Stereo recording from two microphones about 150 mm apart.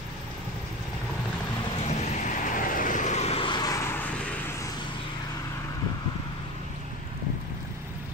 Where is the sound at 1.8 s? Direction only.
50° left (ahead or behind); by 4.5 s 10° left (ahead or behind).